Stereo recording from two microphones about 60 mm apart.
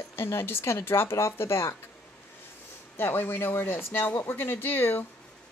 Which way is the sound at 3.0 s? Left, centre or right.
Left.